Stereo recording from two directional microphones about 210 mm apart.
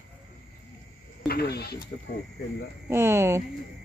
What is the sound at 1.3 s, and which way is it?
Speech, 50° left (ahead or behind).